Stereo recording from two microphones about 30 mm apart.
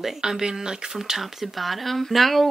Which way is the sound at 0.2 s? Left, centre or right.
Centre.